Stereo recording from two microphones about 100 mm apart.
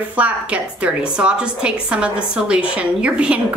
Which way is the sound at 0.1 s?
15° right (ahead or behind).